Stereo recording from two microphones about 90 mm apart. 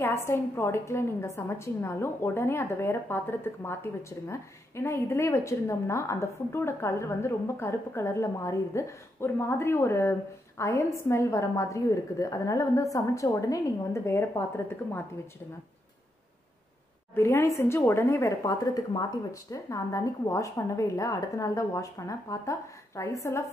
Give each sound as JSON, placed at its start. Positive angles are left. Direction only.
{"t": 0.0, "sound": "speech", "side_deg": 30}
{"t": 14.3, "sound": "speech", "side_deg": 25}
{"t": 17.1, "sound": "speech", "side_deg": 30}